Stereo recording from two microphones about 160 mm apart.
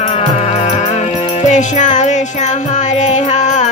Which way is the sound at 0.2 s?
45° left (ahead or behind).